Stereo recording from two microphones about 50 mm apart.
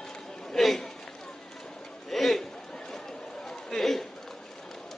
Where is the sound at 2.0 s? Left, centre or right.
Centre.